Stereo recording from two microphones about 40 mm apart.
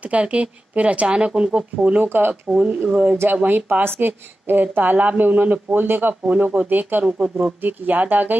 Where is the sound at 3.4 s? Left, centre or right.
Right.